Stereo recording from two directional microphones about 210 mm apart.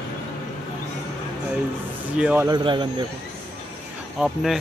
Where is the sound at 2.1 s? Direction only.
5° right (ahead or behind).